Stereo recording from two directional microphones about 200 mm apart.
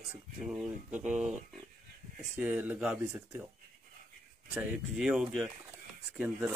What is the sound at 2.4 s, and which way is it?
Speech, 10° right (ahead or behind).